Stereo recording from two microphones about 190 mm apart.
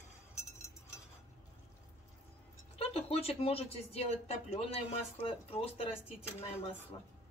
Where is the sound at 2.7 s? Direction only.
30° left (ahead or behind).